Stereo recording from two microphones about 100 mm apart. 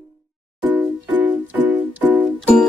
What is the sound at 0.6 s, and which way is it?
Music, 15° right (ahead or behind).